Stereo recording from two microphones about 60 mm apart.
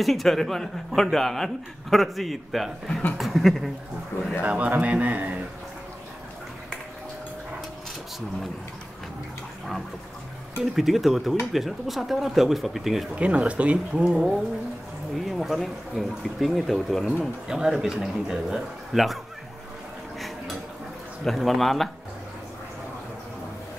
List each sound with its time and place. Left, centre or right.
0.0 s speech: centre
4.4 s speech: right
10.6 s speech: centre
13.1 s speech: right
15.2 s a man's voice: centre
21.2 s speech: centre